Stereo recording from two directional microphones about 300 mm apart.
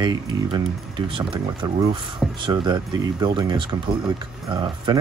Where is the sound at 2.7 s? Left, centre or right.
Centre.